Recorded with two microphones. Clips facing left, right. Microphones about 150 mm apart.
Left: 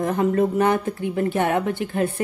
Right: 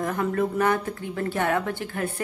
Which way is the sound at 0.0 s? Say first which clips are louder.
Left 5 dB; 25° left (ahead or behind).